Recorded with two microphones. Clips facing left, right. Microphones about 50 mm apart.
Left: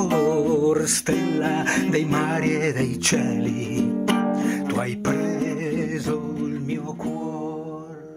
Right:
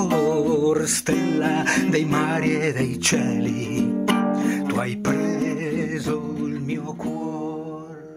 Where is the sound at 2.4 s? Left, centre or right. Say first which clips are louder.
Even; left.